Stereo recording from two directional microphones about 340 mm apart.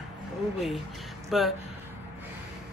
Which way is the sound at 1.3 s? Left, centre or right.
Centre.